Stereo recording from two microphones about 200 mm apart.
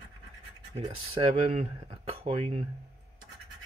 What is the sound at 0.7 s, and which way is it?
Speech, 30° right (ahead or behind).